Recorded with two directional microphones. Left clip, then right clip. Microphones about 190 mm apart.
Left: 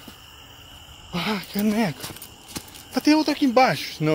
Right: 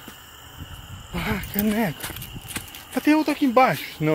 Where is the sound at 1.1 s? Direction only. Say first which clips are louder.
Left 1 dB; 15° left (ahead or behind).